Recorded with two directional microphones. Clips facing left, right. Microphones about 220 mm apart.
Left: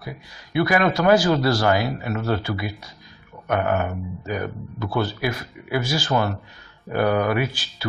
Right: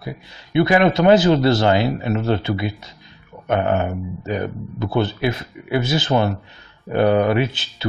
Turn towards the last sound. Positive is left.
turn(degrees=-25)  # may be behind; listen again after turning